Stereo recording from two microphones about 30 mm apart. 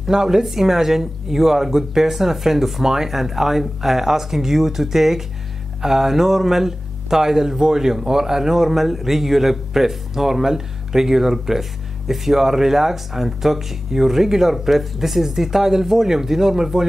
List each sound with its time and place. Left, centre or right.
0.0 s speech: centre